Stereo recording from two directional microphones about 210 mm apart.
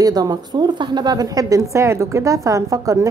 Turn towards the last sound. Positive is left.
turn(degrees=-15)  # may be behind; listen again after turning